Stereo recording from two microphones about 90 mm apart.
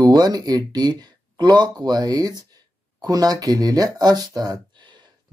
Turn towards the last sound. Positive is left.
turn(degrees=-60)  # may be behind; listen again after turning